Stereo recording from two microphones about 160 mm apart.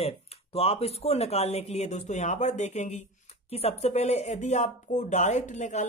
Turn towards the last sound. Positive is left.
turn(degrees=50)  # may be behind; listen again after turning